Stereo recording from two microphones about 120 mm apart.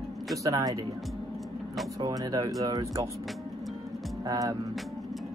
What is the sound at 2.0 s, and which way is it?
Speech, 30° right (ahead or behind).